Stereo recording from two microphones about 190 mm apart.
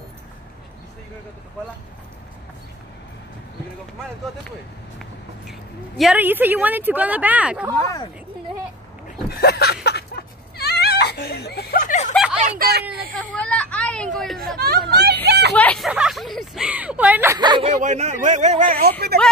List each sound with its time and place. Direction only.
5.5 s speech: centre (ahead or behind)
7.7 s speech: 15° left (ahead or behind)
9.3 s speech: 55° left (ahead or behind)
9.8 s a sound: 55° left (ahead or behind); by 12.1 s 40° left (ahead or behind)
12.1 s a sound: 5° right (ahead or behind)
12.4 s speech: 55° right (ahead or behind)
13.1 s speech: 5° left (ahead or behind)
14.9 s speech: 60° right (ahead or behind)
15.2 s vehicle: 60° right (ahead or behind)
15.5 s speech: 5° left (ahead or behind); by 17.4 s 10° right (ahead or behind)
17.4 s speech: 25° right (ahead or behind)
17.7 s a man's voice: 40° right (ahead or behind); by 19.1 s 55° right (ahead or behind)